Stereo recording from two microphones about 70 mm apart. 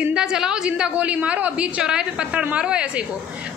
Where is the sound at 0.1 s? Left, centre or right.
Centre.